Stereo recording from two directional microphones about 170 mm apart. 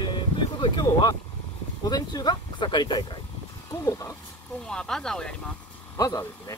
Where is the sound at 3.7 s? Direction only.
20° left (ahead or behind).